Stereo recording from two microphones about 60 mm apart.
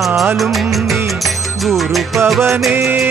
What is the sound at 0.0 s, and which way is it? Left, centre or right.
Music, centre.